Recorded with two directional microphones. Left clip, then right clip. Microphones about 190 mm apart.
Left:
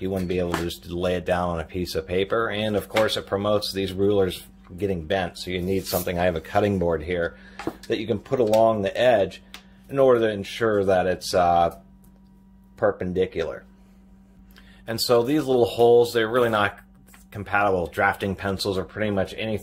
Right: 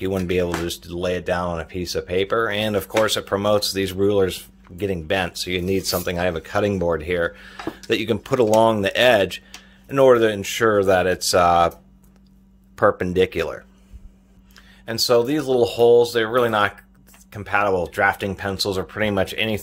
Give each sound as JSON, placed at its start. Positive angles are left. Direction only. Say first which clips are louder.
{"t": 0.0, "sound": "speech", "louder": "right 4 dB", "side_deg": -40}
{"t": 0.5, "sound": "speech", "louder": "right 2 dB", "side_deg": -15}
{"t": 12.7, "sound": "speech", "louder": "right 5 dB", "side_deg": -40}
{"t": 14.9, "sound": "speech", "louder": "right 3 dB", "side_deg": -15}
{"t": 18.8, "sound": "speech", "louder": "right 4 dB", "side_deg": -35}